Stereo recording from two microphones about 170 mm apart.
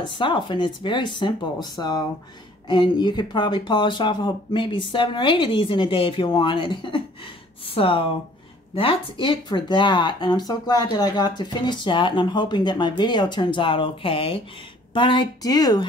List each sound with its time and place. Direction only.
0.0 s speech: 30° left (ahead or behind)